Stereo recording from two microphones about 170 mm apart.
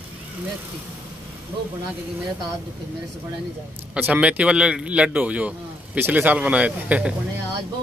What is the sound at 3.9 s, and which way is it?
Speech, 5° right (ahead or behind).